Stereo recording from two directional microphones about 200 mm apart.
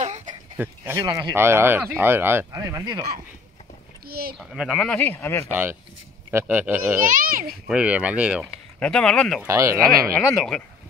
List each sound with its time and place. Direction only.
0.0 s a sound: 35° right (ahead or behind)
0.6 s speech: 15° right (ahead or behind)
4.0 s a sound: 50° right (ahead or behind)
4.4 s speech: 5° right (ahead or behind)
5.5 s speech: 10° right (ahead or behind)
7.1 s a child's voice: 45° right (ahead or behind)
7.6 s speech: 5° right (ahead or behind)
8.7 s speech: 5° left (ahead or behind)
9.4 s speech: 15° right (ahead or behind)
10.1 s speech: 5° left (ahead or behind)